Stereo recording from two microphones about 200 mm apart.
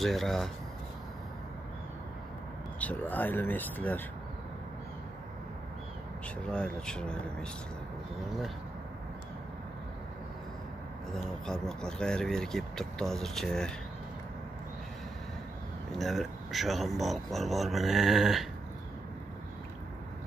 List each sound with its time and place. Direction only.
0.0 s speech: centre (ahead or behind)
2.8 s speech: 10° left (ahead or behind)
6.5 s speech: 5° left (ahead or behind)
11.4 s speech: centre (ahead or behind)
16.0 s speech: centre (ahead or behind)